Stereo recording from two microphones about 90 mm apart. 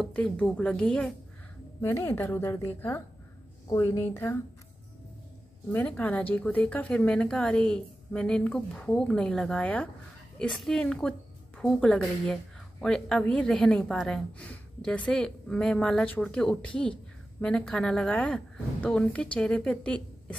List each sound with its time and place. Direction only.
0.0 s a woman's voice: 15° left (ahead or behind)
1.8 s a woman's voice: 30° left (ahead or behind)
4.0 s a woman's voice: 25° left (ahead or behind)
5.9 s a woman's voice: 15° left (ahead or behind)
10.4 s a woman's voice: 5° left (ahead or behind)